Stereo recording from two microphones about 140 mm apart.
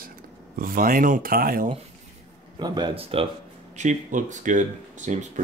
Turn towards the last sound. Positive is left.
turn(degrees=-60)  # may be behind; listen again after turning